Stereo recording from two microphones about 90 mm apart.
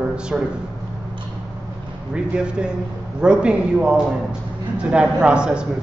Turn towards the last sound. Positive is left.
turn(degrees=-10)  # may be behind; listen again after turning